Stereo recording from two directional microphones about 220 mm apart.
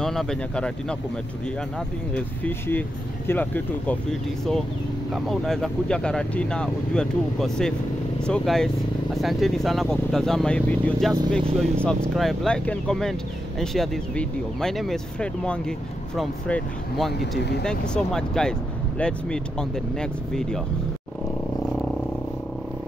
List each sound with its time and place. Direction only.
0.0 s speech: centre (ahead or behind)
2.1 s speech: 5° left (ahead or behind)
5.1 s speech: centre (ahead or behind)
17.4 s speech: 50° left (ahead or behind)
17.6 s speech: 5° left (ahead or behind)